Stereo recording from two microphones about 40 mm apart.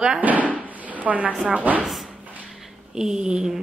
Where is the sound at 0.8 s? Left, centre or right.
Right.